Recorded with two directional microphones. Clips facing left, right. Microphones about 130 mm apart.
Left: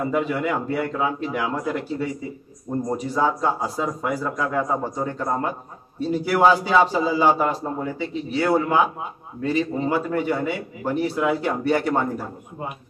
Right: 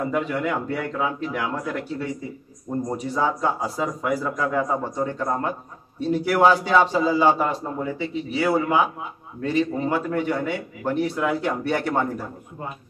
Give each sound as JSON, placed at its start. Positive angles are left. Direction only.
{"t": 0.1, "sound": "a man's voice", "side_deg": 5}